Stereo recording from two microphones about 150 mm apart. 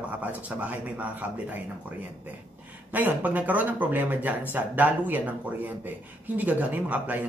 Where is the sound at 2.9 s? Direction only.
10° right (ahead or behind).